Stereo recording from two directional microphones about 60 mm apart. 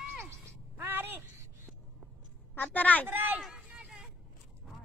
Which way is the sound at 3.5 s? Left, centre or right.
Right.